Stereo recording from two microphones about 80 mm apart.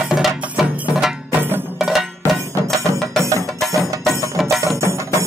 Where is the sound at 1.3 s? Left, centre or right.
Right.